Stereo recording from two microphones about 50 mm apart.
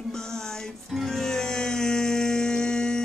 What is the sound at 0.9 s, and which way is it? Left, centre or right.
Music, centre.